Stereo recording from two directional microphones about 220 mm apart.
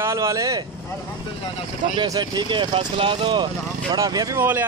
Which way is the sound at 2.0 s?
20° right (ahead or behind).